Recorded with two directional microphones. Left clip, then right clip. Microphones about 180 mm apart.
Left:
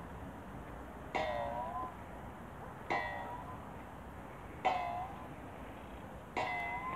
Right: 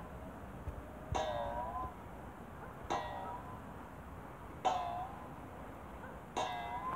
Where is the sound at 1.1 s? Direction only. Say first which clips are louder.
Left 1 dB; 5° left (ahead or behind).